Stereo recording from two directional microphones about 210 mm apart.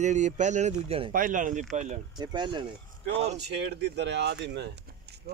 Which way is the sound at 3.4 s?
50° right (ahead or behind).